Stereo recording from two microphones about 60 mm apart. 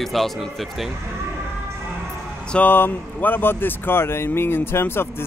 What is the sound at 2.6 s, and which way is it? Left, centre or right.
Speech, left.